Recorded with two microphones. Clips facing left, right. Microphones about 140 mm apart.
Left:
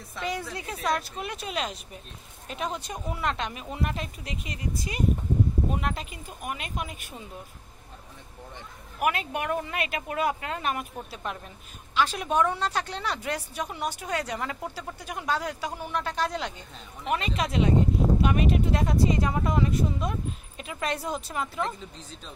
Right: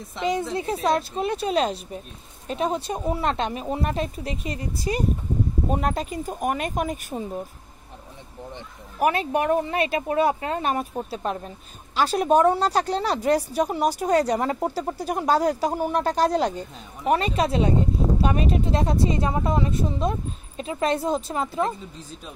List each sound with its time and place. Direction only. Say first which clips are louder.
0.1 s speech: right 8 dB; 20° right (ahead or behind); by 7.2 s 40° right (ahead or behind)
9.0 s speech: right 6 dB; 35° right (ahead or behind)